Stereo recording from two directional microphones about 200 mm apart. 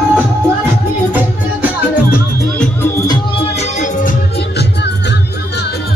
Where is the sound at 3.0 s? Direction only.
20° left (ahead or behind).